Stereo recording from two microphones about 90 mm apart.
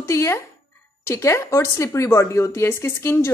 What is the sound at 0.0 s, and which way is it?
A woman's voice, 30° left (ahead or behind).